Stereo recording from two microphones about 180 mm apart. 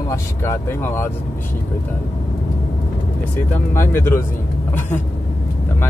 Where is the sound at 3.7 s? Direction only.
15° left (ahead or behind).